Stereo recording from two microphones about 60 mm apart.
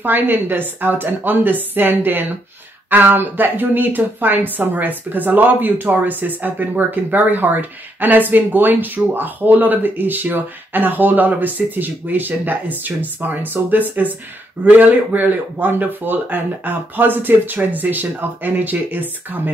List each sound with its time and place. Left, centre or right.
0.0 s speech: right